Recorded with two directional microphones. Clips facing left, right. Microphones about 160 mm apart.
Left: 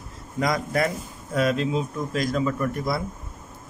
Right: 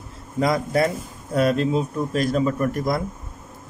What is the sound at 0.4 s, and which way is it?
Speech, 25° right (ahead or behind).